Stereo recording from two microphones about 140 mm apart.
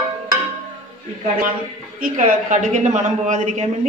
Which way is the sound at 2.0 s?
70° right (ahead or behind).